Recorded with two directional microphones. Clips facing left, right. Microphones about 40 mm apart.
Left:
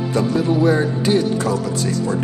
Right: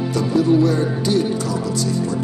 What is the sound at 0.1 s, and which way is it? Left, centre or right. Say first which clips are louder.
Speech: right 2 dB; left.